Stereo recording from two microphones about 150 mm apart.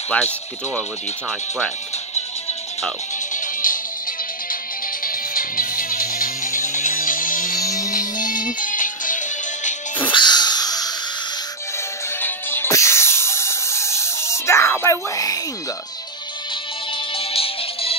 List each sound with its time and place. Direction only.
0.1 s speech: 10° left (ahead or behind)
3.3 s music: 65° left (ahead or behind)
5.0 s music: 70° left (ahead or behind)
7.6 s music: 20° left (ahead or behind)
7.9 s music: 60° left (ahead or behind)
10.0 s a sound: 30° left (ahead or behind)
12.2 s music: 15° left (ahead or behind)
17.1 s music: 40° left (ahead or behind)